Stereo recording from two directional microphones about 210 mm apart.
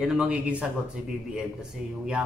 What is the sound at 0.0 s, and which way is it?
Speech, 5° right (ahead or behind).